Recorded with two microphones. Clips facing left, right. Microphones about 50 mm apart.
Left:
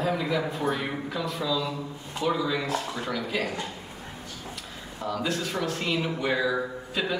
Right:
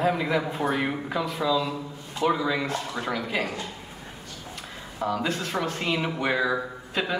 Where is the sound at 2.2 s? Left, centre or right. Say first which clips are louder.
Right 2 dB; centre.